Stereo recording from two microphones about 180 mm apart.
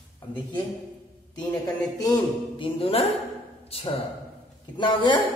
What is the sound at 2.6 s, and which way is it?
Speech, 30° left (ahead or behind).